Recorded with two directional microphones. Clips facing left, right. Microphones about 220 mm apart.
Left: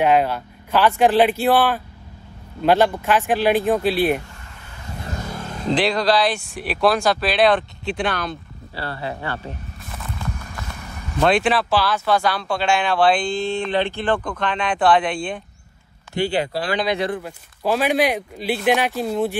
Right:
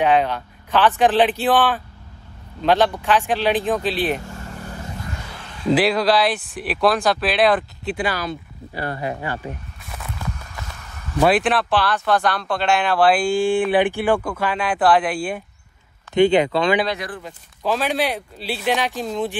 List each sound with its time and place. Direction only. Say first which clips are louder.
0.0 s speech: left 1 dB; 10° left (ahead or behind)
4.3 s vehicle: right 10 dB; 45° right (ahead or behind)
5.0 s vehicle: left 5 dB; 45° left (ahead or behind)
5.7 s speech: right 2 dB; 5° right (ahead or behind)
8.7 s speech: right 3 dB; 15° right (ahead or behind)
11.1 s speech: right 1 dB; 5° right (ahead or behind)
16.2 s speech: right 7 dB; 20° right (ahead or behind)
16.8 s speech: left 4 dB; 20° left (ahead or behind)
17.2 s speech: left 2 dB; 10° left (ahead or behind)